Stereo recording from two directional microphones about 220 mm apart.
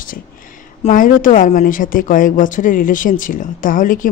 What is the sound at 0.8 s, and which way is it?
Speech, 35° left (ahead or behind).